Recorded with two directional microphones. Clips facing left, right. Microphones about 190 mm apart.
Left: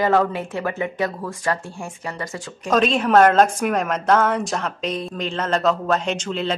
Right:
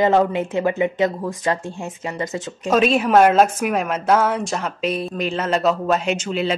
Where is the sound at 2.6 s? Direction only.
5° right (ahead or behind).